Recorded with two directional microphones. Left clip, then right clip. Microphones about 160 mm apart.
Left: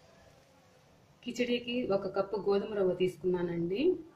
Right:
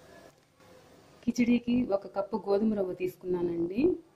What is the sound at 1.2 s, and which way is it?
Speech, 70° right (ahead or behind).